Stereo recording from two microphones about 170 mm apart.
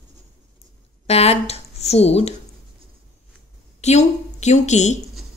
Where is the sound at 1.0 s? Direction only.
35° left (ahead or behind).